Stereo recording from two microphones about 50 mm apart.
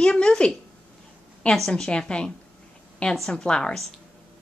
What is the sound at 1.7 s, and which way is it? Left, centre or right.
Speech, centre.